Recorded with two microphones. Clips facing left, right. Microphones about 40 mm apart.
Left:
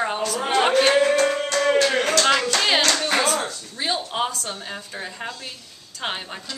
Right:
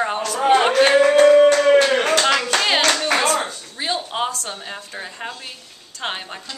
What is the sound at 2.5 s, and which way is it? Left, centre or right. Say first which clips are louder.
Clapping: right 2 dB; right.